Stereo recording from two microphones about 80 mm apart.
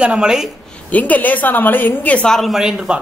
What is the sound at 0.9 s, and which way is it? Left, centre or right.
A woman's voice, centre.